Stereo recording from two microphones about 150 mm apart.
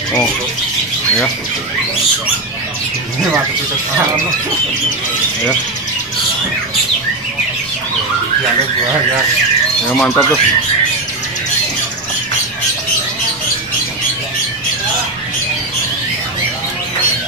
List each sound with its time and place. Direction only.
10.0 s speech: 20° left (ahead or behind)